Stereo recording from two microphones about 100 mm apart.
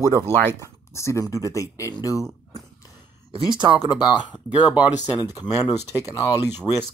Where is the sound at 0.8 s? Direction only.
30° left (ahead or behind).